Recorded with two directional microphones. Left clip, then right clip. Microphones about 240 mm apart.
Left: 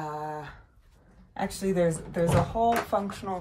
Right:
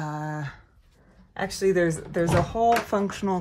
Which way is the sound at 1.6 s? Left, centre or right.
Right.